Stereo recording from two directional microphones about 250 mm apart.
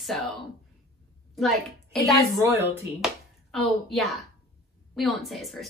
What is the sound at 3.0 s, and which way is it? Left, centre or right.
A woman's voice, centre.